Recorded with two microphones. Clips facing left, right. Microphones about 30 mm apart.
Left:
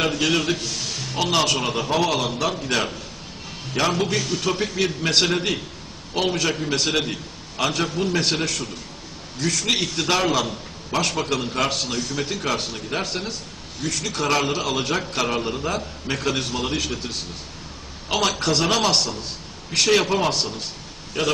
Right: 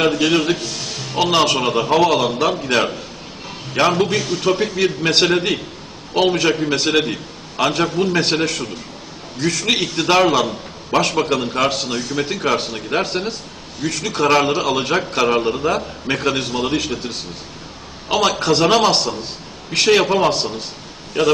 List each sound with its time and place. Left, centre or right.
0.0 s a man's voice: centre